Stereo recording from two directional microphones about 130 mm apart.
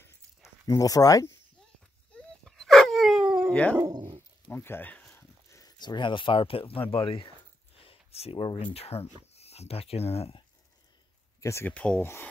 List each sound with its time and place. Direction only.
0.7 s speech: 25° left (ahead or behind)
2.1 s dog: 5° left (ahead or behind)
3.7 s speech: 25° right (ahead or behind)
4.6 s speech: 15° left (ahead or behind)
5.5 s speech: 30° left (ahead or behind); by 10.4 s 50° left (ahead or behind)
11.4 s speech: 20° left (ahead or behind)
11.7 s speech: 10° left (ahead or behind)